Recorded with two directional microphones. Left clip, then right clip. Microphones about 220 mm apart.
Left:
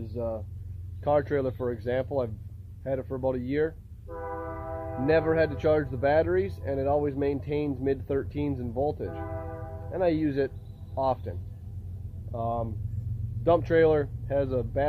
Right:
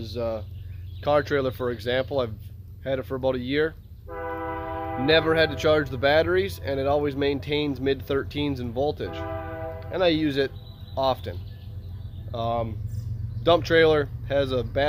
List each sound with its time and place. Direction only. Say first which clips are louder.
0.0 s speech: right 4 dB; 5° right (ahead or behind)
4.1 s train: right 5 dB; 35° right (ahead or behind)
5.0 s speech: right 4 dB; centre (ahead or behind)